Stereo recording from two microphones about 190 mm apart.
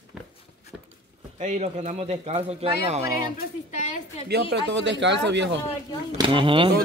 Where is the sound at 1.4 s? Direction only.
35° right (ahead or behind).